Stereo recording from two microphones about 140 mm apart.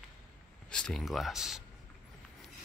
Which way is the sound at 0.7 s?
5° left (ahead or behind).